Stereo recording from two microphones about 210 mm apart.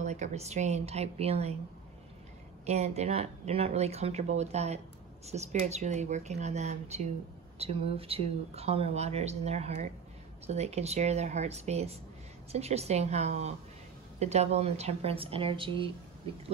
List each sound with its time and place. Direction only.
0.0 s speech: 35° right (ahead or behind)
2.6 s speech: 30° right (ahead or behind)